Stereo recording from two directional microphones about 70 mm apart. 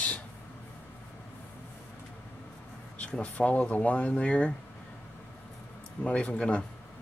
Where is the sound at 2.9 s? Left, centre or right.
Centre.